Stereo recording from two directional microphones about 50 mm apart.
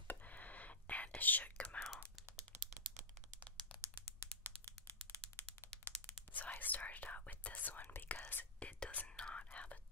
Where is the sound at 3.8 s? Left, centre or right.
Right.